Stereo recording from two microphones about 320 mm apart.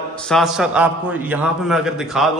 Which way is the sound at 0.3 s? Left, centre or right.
Centre.